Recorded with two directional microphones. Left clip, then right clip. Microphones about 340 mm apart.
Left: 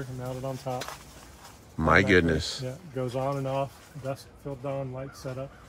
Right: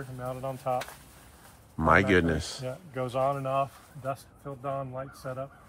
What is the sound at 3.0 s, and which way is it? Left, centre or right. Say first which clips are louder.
Speech: right 2 dB; right.